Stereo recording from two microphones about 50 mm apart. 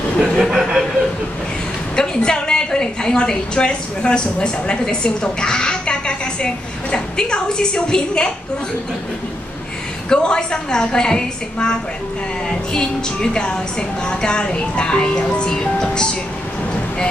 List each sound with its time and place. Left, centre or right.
0.2 s a sound: centre
2.0 s a woman's voice: centre
10.0 s a woman's voice: centre